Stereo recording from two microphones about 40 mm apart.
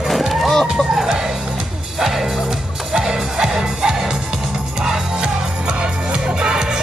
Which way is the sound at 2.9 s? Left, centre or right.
Centre.